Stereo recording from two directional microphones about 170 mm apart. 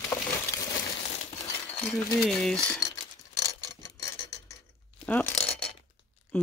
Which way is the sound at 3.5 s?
20° left (ahead or behind).